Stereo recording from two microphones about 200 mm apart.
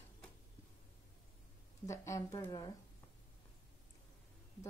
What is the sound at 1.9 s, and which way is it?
Speech, 15° left (ahead or behind).